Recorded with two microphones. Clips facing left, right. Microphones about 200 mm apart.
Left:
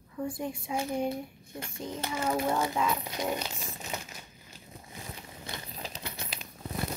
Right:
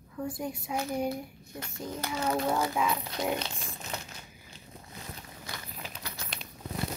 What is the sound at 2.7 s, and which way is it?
Speech, 5° right (ahead or behind).